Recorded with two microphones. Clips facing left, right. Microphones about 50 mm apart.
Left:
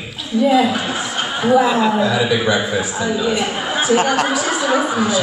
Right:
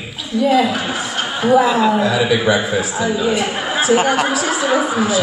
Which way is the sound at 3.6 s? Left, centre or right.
Centre.